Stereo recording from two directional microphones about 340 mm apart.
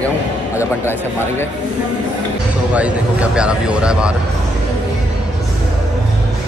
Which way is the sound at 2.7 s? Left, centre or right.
Centre.